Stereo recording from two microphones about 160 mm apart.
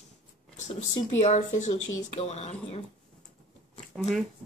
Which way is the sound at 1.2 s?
45° left (ahead or behind).